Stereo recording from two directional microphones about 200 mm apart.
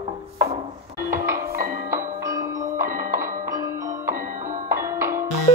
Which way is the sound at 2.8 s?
45° right (ahead or behind).